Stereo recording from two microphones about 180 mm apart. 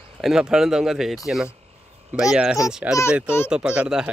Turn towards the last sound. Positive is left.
turn(degrees=-5)  # may be behind; listen again after turning